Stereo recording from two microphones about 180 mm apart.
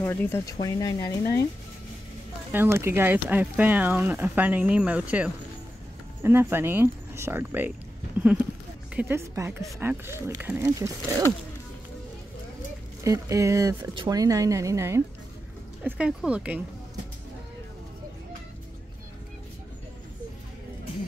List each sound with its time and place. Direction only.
0.0 s speech: 15° left (ahead or behind)
2.5 s speech: 15° right (ahead or behind)
8.9 s speech: 15° right (ahead or behind)
13.0 s speech: 15° right (ahead or behind)
15.8 s speech: 5° right (ahead or behind)